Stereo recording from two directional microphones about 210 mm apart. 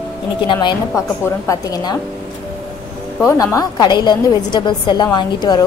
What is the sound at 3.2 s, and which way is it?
A woman's voice, 15° left (ahead or behind).